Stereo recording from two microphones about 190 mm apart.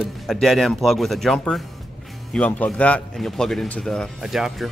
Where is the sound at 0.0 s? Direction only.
Centre (ahead or behind).